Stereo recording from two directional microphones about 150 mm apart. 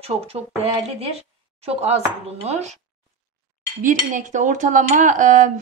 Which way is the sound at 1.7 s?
45° right (ahead or behind).